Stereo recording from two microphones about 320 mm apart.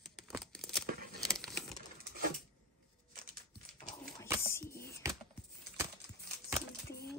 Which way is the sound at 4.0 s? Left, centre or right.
Centre.